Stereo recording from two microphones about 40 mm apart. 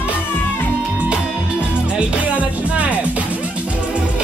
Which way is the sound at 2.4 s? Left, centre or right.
Right.